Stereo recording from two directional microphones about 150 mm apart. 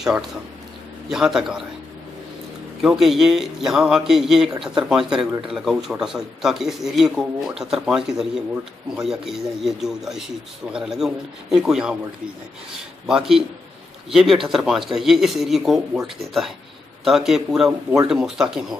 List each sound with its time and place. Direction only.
1.1 s speech: 5° right (ahead or behind)
2.8 s speech: 5° right (ahead or behind)
13.0 s speech: 5° right (ahead or behind)